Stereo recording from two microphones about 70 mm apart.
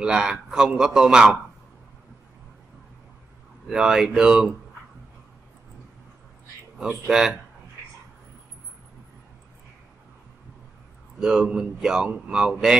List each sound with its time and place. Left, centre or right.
0.0 s a man's voice: centre
3.6 s a man's voice: centre
6.8 s a man's voice: centre
11.1 s a man's voice: centre